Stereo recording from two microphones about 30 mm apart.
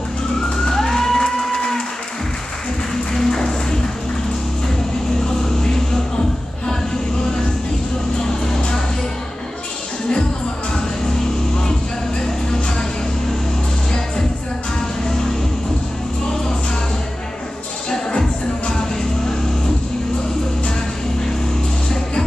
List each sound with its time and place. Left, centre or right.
0.7 s music: centre
3.2 s music: centre